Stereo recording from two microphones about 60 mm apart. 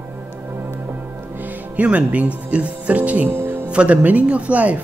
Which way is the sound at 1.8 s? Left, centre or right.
Right.